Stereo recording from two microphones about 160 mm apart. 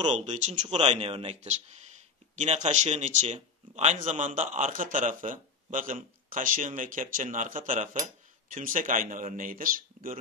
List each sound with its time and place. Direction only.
0.1 s speech: 45° right (ahead or behind); by 10.1 s 60° right (ahead or behind)